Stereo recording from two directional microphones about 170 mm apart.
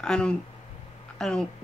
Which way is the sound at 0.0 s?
5° left (ahead or behind).